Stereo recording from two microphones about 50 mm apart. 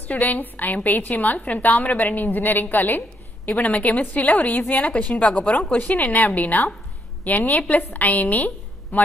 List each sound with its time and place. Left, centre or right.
0.1 s a woman's voice: left